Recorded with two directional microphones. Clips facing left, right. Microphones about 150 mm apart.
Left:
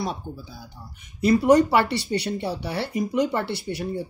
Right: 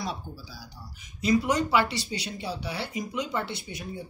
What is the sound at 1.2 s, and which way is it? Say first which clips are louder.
Speech: left 8 dB; 60° left (ahead or behind).